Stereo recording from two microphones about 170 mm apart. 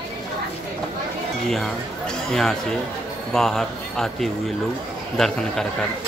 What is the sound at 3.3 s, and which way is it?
Speech, centre (ahead or behind).